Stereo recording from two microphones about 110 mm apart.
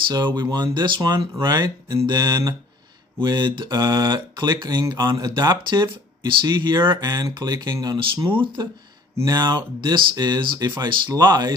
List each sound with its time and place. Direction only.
0.1 s speech: 40° right (ahead or behind)
3.2 s speech: 45° right (ahead or behind)
6.9 s speech: 35° right (ahead or behind)
8.3 s speech: 50° right (ahead or behind)
9.1 s speech: 30° right (ahead or behind)